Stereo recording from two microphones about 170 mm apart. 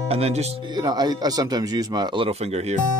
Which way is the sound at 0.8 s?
25° right (ahead or behind).